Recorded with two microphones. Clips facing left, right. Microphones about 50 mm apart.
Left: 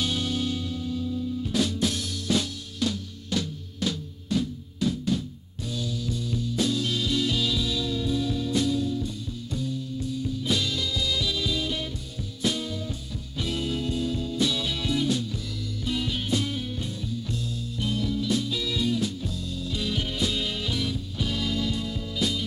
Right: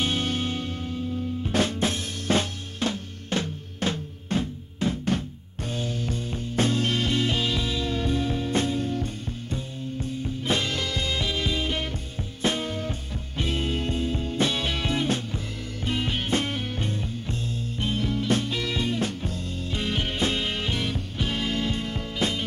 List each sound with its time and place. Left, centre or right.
0.0 s music: right